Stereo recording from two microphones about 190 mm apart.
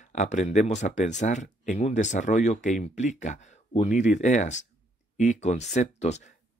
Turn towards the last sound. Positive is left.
turn(degrees=35)  # may be behind; listen again after turning